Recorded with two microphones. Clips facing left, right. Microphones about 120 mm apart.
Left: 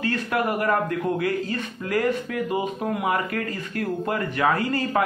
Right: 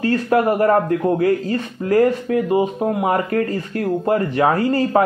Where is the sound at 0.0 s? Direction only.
35° right (ahead or behind).